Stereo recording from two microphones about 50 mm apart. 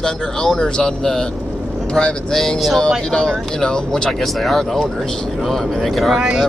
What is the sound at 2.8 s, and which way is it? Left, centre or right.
Speech, centre.